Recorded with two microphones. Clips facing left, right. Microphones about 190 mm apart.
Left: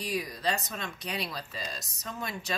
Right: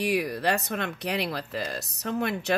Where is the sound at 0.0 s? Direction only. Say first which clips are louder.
Right 6 dB; 65° right (ahead or behind).